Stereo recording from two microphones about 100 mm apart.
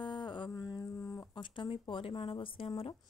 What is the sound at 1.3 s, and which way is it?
Speech, 55° left (ahead or behind).